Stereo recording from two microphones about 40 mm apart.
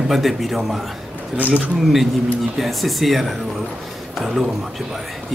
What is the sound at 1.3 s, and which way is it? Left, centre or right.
Speech, right.